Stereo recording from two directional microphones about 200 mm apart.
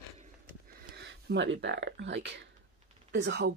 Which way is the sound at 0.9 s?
60° right (ahead or behind).